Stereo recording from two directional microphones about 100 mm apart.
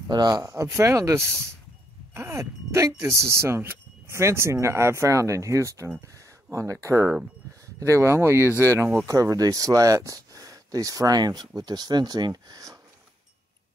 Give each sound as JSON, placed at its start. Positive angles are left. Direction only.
{"t": 0.1, "sound": "speech", "side_deg": -45}
{"t": 0.4, "sound": "speech", "side_deg": -30}